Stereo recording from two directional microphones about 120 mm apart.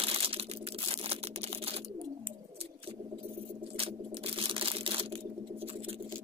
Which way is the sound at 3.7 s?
55° right (ahead or behind).